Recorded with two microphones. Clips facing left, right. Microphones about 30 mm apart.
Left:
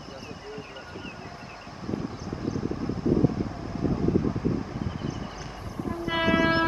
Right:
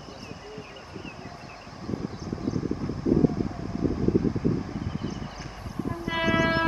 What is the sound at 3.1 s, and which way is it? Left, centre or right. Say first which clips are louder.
Vehicle: right 1 dB; centre.